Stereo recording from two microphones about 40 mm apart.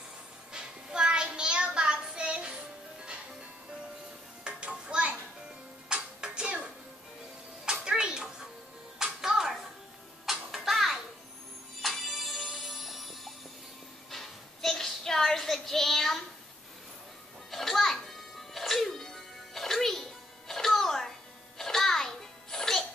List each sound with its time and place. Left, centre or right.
0.5 s child singing: right
4.5 s music: right
7.6 s music: centre
14.1 s child singing: centre
17.5 s music: centre